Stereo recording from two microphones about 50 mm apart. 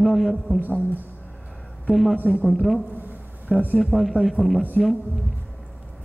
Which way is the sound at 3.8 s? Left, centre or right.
Centre.